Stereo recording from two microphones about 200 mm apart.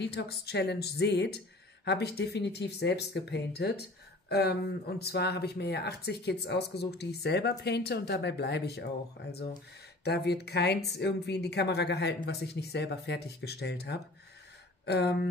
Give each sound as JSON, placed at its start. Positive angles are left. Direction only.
{"t": 0.0, "sound": "speech", "side_deg": 55}